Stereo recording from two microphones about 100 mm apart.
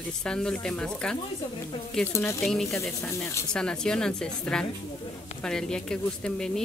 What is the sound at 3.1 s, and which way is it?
Speech, 25° left (ahead or behind).